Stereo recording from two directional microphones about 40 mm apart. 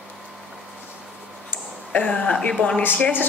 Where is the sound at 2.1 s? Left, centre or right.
Left.